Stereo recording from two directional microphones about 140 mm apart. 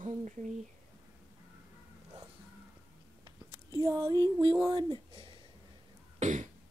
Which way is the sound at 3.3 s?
25° right (ahead or behind).